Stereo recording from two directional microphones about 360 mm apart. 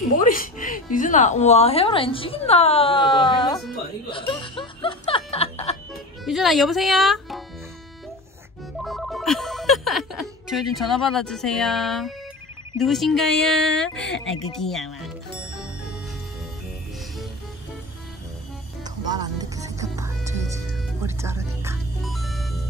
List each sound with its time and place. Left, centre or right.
0.2 s a woman's voice: left
4.1 s snicker: centre
6.2 s speech: centre
8.8 s telephone bell ringing: centre
12.7 s speech: centre
19.0 s music: centre